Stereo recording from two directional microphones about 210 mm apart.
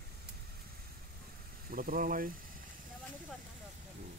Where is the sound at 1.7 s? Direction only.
40° right (ahead or behind).